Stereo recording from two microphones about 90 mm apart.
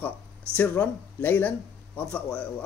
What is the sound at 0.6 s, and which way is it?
A man's voice, 20° left (ahead or behind).